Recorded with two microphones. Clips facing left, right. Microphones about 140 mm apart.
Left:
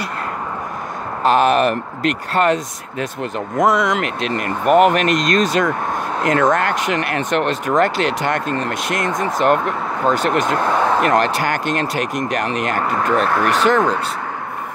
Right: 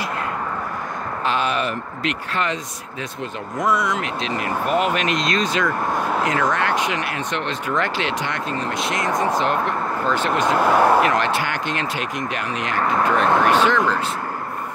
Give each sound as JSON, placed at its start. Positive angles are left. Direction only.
{"t": 1.2, "sound": "speech", "side_deg": 50}
{"t": 2.0, "sound": "speech", "side_deg": 45}
{"t": 3.6, "sound": "speech", "side_deg": 90}
{"t": 4.2, "sound": "speech", "side_deg": 55}
{"t": 10.4, "sound": "speech", "side_deg": -5}
{"t": 11.1, "sound": "speech", "side_deg": 45}
{"t": 13.3, "sound": "speech", "side_deg": -20}
{"t": 13.7, "sound": "speech", "side_deg": 45}